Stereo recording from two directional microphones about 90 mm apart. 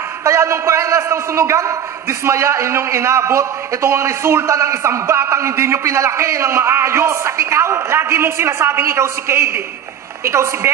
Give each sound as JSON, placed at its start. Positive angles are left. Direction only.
{"t": 0.2, "sound": "a man's voice", "side_deg": -30}